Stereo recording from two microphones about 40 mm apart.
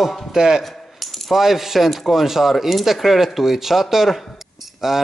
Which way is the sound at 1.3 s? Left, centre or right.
Centre.